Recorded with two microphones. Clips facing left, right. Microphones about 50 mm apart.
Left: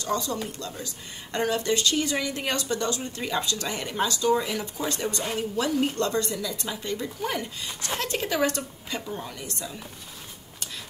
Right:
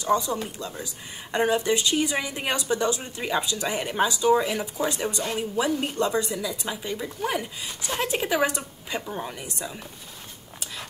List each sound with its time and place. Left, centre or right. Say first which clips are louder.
0.0 s speech: right 4 dB; centre